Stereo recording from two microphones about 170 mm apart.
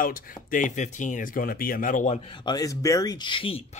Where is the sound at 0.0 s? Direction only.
55° left (ahead or behind).